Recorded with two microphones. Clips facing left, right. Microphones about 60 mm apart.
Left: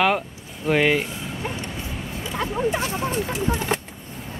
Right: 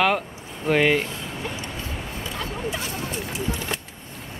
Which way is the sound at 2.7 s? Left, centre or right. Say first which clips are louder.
Left 5 dB; left.